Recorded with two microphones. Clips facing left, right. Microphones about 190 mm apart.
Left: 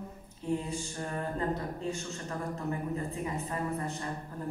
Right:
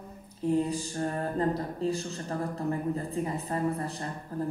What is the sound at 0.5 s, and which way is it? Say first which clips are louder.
A woman's voice: right 6 dB; 35° right (ahead or behind).